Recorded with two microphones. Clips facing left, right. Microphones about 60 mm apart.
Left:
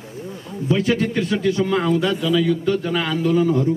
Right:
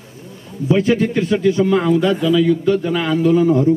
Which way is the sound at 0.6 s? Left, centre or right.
Right.